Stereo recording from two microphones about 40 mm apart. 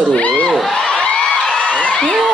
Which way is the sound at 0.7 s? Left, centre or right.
Left.